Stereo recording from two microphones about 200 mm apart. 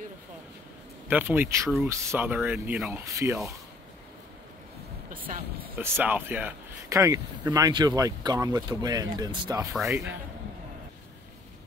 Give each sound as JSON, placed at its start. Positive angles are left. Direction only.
{"t": 1.0, "sound": "speech", "side_deg": -10}
{"t": 5.1, "sound": "a sound", "side_deg": -45}
{"t": 5.8, "sound": "speech", "side_deg": -10}